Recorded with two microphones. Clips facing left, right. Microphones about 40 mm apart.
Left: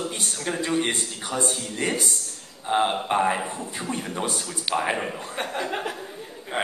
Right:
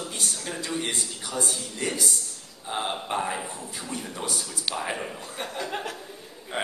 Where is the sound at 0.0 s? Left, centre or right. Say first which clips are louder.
Left 4 dB; left.